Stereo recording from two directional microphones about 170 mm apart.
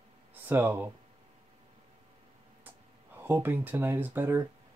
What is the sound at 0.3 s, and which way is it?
Speech, 10° right (ahead or behind).